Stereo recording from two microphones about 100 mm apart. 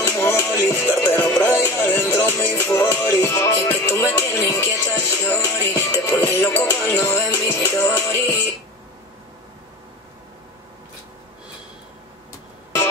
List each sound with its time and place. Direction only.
0.0 s music: 25° left (ahead or behind)
6.2 s music: 20° left (ahead or behind)